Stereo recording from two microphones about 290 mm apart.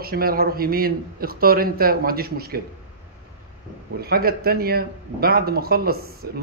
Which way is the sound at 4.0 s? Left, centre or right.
Right.